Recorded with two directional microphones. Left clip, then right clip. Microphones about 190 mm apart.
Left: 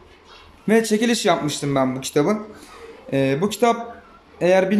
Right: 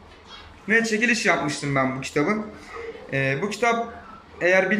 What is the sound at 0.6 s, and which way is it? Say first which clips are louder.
Speech: left 2 dB; 25° left (ahead or behind).